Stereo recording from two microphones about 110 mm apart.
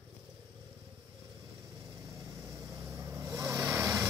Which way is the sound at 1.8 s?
30° right (ahead or behind).